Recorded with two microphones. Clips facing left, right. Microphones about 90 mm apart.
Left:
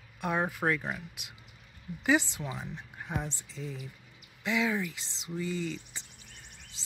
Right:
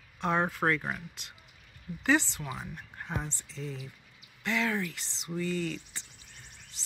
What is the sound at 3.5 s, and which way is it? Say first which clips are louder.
Speech: right 1 dB; 15° left (ahead or behind).